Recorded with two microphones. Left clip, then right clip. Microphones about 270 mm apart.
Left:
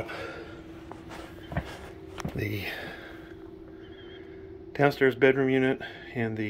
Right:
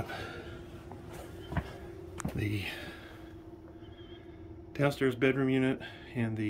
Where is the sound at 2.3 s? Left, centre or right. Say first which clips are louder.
Left 4 dB; centre.